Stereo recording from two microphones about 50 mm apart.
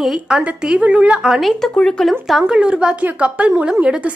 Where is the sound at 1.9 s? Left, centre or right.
Centre.